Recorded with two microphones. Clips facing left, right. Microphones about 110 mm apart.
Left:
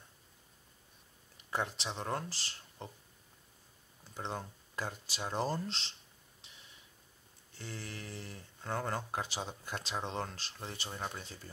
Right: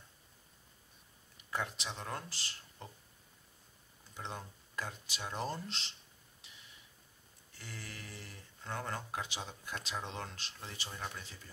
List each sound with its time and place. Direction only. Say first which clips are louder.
1.5 s speech: left 3 dB; 30° left (ahead or behind)
4.1 s speech: left 4 dB; 35° left (ahead or behind)
7.5 s speech: left 4 dB; 30° left (ahead or behind)